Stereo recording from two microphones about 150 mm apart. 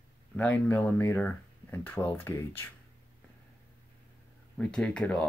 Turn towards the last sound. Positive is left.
turn(degrees=5)  # may be behind; listen again after turning